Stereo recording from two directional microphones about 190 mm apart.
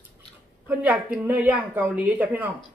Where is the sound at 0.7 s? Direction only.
10° right (ahead or behind).